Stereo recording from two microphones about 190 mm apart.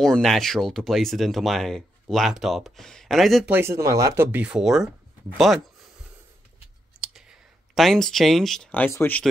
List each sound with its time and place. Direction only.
0.0 s speech: centre (ahead or behind)
3.5 s speech: 15° right (ahead or behind)
7.0 s speech: centre (ahead or behind)